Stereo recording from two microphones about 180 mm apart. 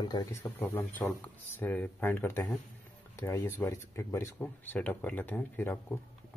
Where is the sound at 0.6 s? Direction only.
10° left (ahead or behind).